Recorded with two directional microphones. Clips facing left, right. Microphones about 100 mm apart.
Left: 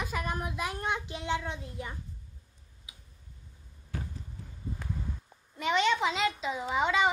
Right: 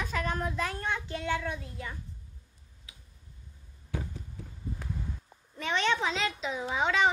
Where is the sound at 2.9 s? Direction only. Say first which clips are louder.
Even; 15° left (ahead or behind).